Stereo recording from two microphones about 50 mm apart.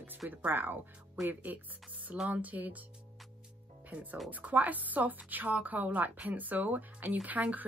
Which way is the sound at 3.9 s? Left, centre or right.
Right.